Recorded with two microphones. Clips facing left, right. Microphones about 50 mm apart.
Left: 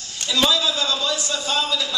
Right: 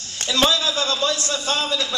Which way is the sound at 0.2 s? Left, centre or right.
Right.